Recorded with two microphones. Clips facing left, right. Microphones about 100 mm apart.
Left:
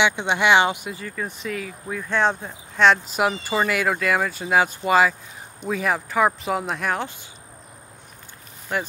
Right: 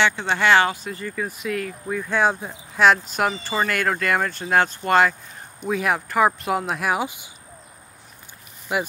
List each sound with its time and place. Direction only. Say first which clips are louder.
0.0 s speech: even; 15° left (ahead or behind)
0.8 s speech: right 2 dB; 5° left (ahead or behind); by 7.2 s 10° right (ahead or behind)
8.7 s speech: right 2 dB; 10° right (ahead or behind)